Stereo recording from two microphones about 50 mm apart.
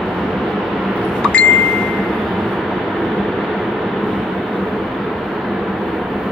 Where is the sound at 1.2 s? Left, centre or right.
Left.